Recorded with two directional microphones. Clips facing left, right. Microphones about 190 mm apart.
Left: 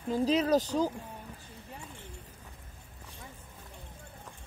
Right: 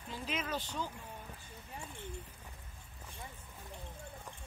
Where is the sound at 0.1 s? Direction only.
35° left (ahead or behind).